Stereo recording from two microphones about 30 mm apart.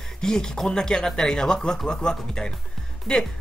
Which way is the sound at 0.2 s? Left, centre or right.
Left.